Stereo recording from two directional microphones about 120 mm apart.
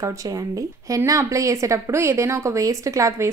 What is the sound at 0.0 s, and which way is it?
Speech, 30° right (ahead or behind).